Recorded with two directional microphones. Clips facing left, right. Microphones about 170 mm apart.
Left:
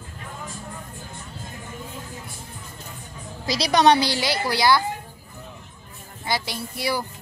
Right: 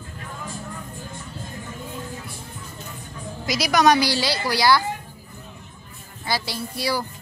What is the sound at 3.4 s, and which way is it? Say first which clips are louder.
A woman's voice: even; 30° left (ahead or behind).